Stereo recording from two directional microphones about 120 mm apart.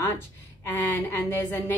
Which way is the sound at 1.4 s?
20° left (ahead or behind).